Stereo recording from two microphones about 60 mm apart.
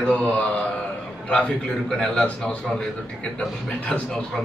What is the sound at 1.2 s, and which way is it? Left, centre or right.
A man's voice, centre.